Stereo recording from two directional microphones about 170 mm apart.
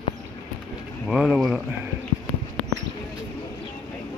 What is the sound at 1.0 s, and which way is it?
Speech, centre (ahead or behind).